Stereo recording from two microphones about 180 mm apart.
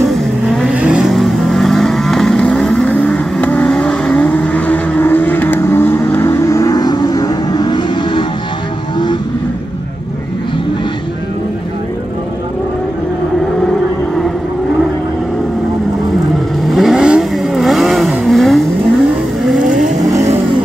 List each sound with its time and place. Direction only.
0.7 s vehicle: 5° right (ahead or behind); by 9.2 s 25° left (ahead or behind)
16.6 s vehicle: centre (ahead or behind)
19.6 s vehicle: 45° right (ahead or behind)
20.0 s vehicle: 20° right (ahead or behind)